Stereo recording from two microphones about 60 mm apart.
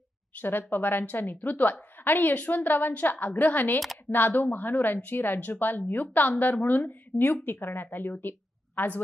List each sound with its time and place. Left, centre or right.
0.4 s a woman's voice: left